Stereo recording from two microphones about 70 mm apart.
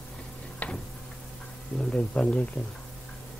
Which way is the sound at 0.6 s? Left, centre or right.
Left.